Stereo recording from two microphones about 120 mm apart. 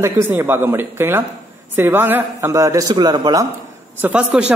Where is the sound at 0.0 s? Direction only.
20° right (ahead or behind); by 3.4 s 35° right (ahead or behind).